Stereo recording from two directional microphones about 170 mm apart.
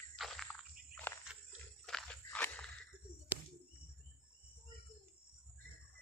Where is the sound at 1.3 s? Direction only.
5° right (ahead or behind).